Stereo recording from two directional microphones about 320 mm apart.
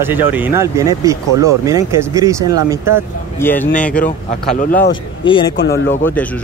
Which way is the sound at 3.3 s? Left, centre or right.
Centre.